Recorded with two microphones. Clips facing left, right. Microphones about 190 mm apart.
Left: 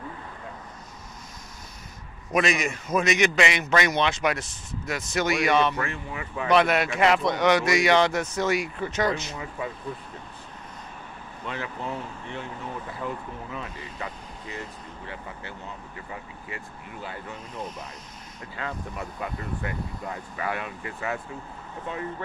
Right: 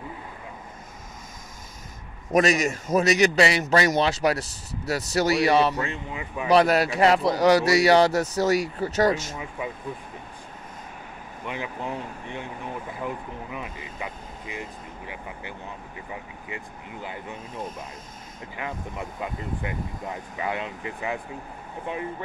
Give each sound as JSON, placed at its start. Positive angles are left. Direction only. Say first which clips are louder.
{"t": 2.3, "sound": "a man's voice", "louder": "right 4 dB", "side_deg": -40}
{"t": 5.8, "sound": "speech", "louder": "right 1 dB", "side_deg": -20}
{"t": 6.5, "sound": "a man's voice", "louder": "right 2 dB", "side_deg": -35}
{"t": 9.6, "sound": "speech", "louder": "even", "side_deg": -15}
{"t": 11.4, "sound": "speech", "louder": "right 1 dB", "side_deg": -15}
{"t": 18.6, "sound": "speech", "louder": "right 1 dB", "side_deg": -20}